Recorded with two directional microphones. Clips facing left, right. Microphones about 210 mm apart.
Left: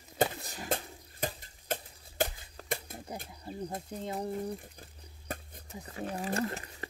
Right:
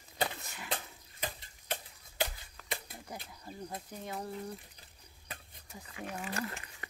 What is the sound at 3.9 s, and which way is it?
Speech, 25° left (ahead or behind).